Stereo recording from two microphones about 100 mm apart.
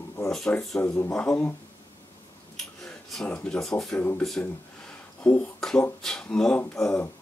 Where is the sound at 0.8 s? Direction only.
25° left (ahead or behind).